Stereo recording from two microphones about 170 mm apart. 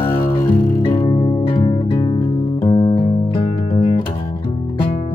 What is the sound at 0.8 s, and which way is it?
Music, 35° left (ahead or behind).